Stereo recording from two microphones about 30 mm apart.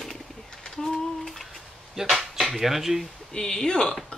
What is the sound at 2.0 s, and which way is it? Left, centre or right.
Speech, centre.